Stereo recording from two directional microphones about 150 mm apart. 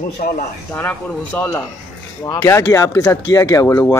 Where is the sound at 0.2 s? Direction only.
60° left (ahead or behind).